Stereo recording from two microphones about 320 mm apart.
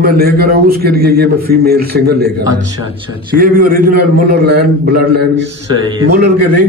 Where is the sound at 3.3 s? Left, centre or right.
Right.